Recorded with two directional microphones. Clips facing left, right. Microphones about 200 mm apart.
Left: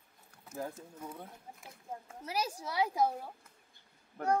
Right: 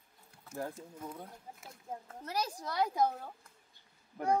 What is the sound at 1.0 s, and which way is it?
Speech, 10° left (ahead or behind).